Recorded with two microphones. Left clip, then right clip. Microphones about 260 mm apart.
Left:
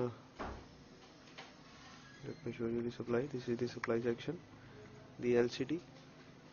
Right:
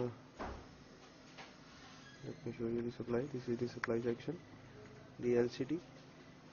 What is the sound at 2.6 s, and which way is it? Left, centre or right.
Speech, left.